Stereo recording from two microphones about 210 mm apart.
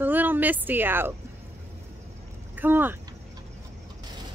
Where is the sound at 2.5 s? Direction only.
10° right (ahead or behind).